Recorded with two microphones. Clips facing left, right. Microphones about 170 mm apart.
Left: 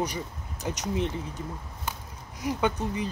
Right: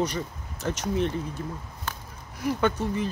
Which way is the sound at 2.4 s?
15° left (ahead or behind).